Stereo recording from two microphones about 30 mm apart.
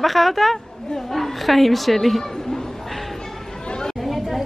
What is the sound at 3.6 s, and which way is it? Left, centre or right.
Chatter, left.